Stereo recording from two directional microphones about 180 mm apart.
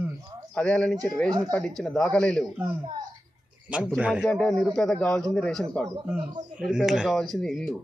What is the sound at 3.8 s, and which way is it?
A man's voice, 5° right (ahead or behind).